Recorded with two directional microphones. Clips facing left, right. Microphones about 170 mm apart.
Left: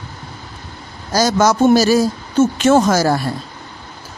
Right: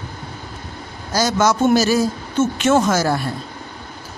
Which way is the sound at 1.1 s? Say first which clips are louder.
Left 3 dB; 40° left (ahead or behind).